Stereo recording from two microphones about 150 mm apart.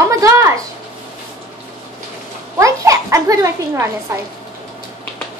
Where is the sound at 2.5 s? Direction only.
20° right (ahead or behind).